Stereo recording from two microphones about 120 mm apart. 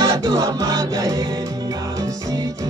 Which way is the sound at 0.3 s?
25° right (ahead or behind).